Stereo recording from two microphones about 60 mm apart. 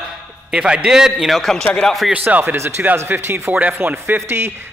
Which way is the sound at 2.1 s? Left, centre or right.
Right.